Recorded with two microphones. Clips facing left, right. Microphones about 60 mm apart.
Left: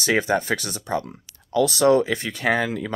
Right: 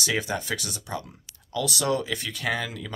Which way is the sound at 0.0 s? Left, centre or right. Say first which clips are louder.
Left 7 dB; left.